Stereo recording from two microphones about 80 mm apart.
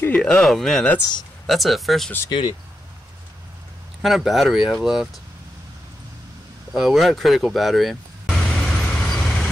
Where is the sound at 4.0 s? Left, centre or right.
Centre.